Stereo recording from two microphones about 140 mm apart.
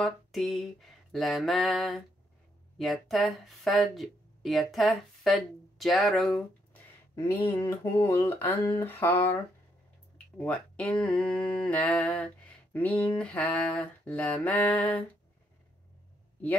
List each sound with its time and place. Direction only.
0.0 s speech: centre (ahead or behind)
7.3 s a sound: 40° left (ahead or behind)
7.6 s speech: 20° left (ahead or behind)